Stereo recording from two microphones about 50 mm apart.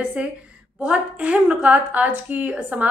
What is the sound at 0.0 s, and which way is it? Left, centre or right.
A woman's voice, right.